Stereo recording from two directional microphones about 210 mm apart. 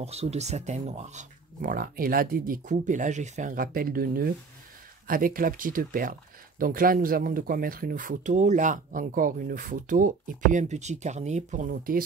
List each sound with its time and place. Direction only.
0.0 s speech: 30° right (ahead or behind)